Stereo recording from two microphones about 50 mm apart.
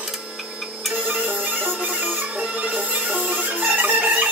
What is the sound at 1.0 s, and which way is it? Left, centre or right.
Music, right.